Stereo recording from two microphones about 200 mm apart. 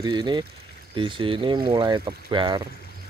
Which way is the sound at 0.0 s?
20° right (ahead or behind).